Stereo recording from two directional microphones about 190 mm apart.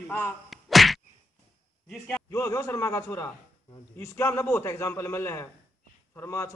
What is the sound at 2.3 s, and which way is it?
A man's voice, 15° left (ahead or behind).